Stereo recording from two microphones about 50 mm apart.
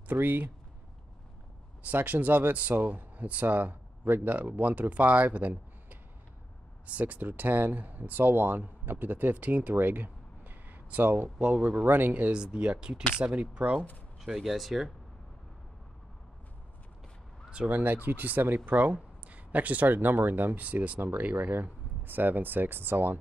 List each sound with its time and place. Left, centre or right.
0.1 s speech: right
1.9 s speech: right
7.0 s speech: right
11.8 s speech: right
12.3 s speech: centre
14.2 s speech: centre
17.6 s speech: right